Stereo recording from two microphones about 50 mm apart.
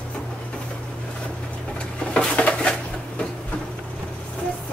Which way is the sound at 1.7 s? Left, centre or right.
Centre.